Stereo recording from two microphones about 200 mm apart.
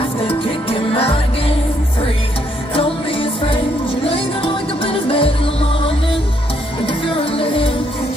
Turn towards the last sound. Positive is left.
turn(degrees=25)  # may be behind; listen again after turning